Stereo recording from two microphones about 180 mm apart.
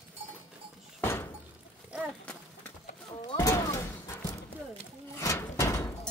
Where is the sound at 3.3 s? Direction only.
15° left (ahead or behind).